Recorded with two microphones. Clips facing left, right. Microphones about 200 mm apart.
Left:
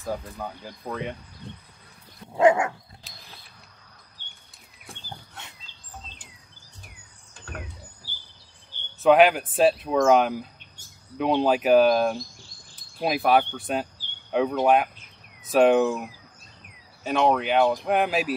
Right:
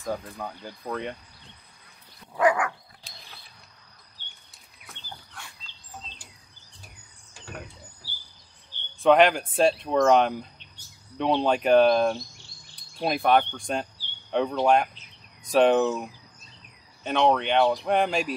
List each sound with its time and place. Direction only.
0.1 s speech: centre (ahead or behind)
2.3 s dog: 25° left (ahead or behind)
4.2 s a sound: 45° left (ahead or behind)
5.4 s a sound: 25° left (ahead or behind)
8.0 s cricket: 45° left (ahead or behind)
9.0 s speech: 5° left (ahead or behind)
17.0 s speech: 5° left (ahead or behind)